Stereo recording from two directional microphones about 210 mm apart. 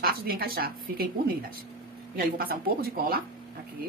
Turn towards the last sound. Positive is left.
turn(degrees=-45)  # may be behind; listen again after turning